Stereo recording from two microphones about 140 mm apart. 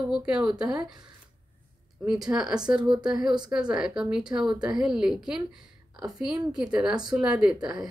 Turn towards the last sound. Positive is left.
turn(degrees=-5)  # may be behind; listen again after turning